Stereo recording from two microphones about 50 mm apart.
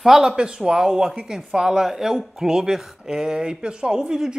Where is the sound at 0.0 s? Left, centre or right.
Centre.